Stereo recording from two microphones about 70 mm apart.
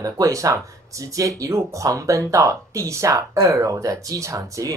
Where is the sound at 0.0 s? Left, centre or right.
Right.